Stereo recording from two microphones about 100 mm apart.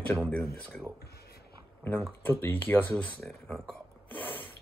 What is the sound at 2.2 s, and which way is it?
Speech, 20° left (ahead or behind).